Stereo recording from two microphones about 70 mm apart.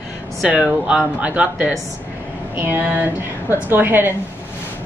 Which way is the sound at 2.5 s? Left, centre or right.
Right.